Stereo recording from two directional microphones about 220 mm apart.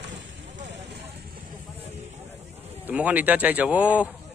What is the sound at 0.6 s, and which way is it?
Vehicle, 55° right (ahead or behind).